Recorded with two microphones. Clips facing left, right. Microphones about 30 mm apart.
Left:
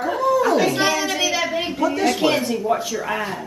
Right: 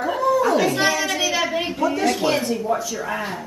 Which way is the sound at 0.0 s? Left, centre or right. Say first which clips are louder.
Left 1 dB; centre.